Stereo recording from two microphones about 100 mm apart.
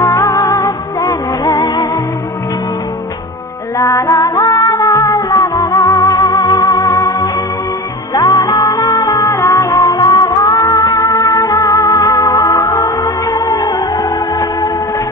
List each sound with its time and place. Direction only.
0.0 s music: 35° left (ahead or behind)
3.7 s music: 35° left (ahead or behind)